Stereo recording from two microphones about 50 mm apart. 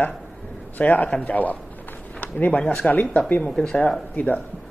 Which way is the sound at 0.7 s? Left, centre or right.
Left.